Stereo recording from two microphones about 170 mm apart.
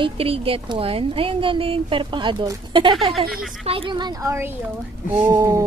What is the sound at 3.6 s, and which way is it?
A woman's voice, 30° right (ahead or behind).